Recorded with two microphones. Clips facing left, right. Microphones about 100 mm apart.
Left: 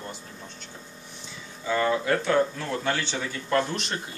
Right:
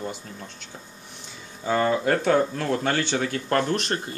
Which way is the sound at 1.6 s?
45° right (ahead or behind).